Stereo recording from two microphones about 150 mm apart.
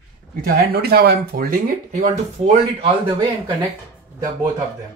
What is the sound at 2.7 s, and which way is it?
Speech, 35° right (ahead or behind).